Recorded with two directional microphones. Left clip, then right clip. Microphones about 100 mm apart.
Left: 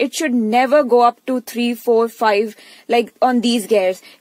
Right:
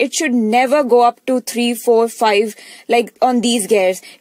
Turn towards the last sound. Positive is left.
turn(degrees=-35)  # may be behind; listen again after turning